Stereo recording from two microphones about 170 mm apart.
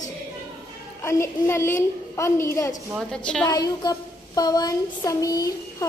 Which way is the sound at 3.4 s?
25° left (ahead or behind).